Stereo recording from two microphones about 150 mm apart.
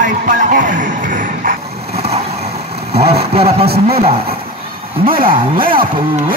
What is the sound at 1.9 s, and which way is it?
Vehicle, 45° right (ahead or behind).